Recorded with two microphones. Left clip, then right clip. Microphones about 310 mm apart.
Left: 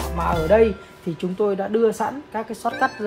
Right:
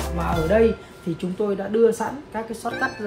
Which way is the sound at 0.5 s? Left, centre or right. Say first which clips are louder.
Left 2 dB; centre.